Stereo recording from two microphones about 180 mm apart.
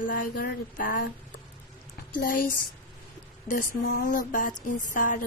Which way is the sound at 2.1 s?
50° left (ahead or behind).